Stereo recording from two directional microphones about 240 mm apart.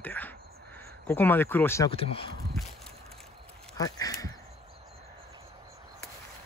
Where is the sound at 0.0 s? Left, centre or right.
Centre.